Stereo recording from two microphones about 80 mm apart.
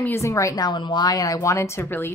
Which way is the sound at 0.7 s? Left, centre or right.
Left.